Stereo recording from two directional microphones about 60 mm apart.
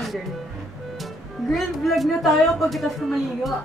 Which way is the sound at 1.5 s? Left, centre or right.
Centre.